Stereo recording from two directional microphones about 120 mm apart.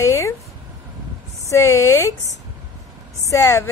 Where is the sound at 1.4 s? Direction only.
25° left (ahead or behind).